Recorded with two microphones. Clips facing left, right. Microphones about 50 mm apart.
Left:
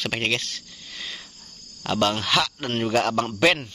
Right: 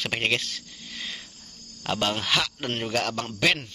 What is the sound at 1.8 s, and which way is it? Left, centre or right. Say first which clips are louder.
A man's voice: left 3 dB; centre.